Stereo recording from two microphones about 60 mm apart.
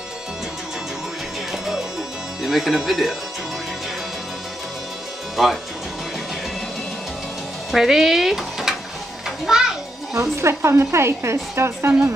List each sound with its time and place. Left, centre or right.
1.5 s music: centre
2.4 s speech: centre
5.3 s speech: centre
7.7 s speech: centre
9.5 s children playing: centre
10.1 s a woman's voice: right